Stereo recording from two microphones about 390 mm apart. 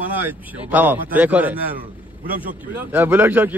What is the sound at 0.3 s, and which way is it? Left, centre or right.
Speech, centre.